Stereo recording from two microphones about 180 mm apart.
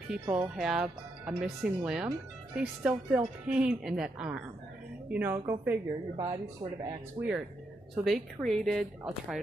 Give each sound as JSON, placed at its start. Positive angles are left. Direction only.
{"t": 0.2, "sound": "speech", "side_deg": -20}
{"t": 0.6, "sound": "a woman's voice", "side_deg": -5}
{"t": 7.9, "sound": "a woman's voice", "side_deg": 0}